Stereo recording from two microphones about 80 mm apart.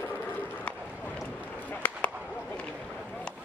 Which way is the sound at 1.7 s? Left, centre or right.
Left.